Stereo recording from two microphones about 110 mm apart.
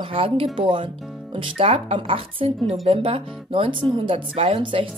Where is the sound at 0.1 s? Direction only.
55° right (ahead or behind).